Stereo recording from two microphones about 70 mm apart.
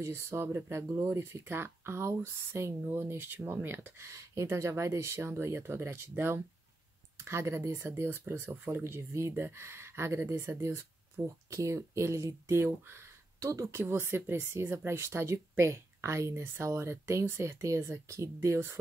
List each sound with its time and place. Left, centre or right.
0.0 s speech: right
4.1 s speech: right
13.4 s speech: right
13.7 s speech: right